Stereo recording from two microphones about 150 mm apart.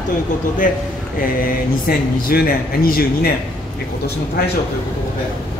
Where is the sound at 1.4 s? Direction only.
80° left.